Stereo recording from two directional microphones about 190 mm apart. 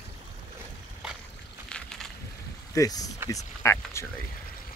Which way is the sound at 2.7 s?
20° left (ahead or behind).